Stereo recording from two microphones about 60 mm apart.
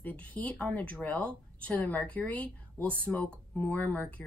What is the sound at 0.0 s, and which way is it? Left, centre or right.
Speech, left.